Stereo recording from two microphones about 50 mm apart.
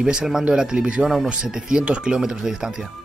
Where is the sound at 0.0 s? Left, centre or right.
Centre.